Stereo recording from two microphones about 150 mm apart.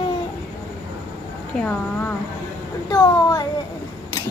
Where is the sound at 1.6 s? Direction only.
10° left (ahead or behind).